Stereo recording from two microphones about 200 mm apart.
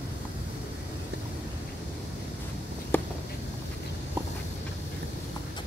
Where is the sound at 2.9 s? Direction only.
10° left (ahead or behind).